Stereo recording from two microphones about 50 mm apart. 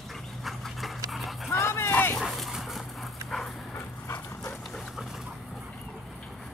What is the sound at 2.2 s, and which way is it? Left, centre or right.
Dog, centre.